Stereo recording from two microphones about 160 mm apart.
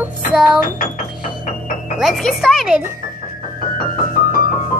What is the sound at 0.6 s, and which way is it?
Speech, 60° left (ahead or behind).